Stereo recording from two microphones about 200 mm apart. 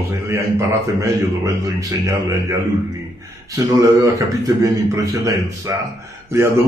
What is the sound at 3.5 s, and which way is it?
A man's voice, 15° right (ahead or behind).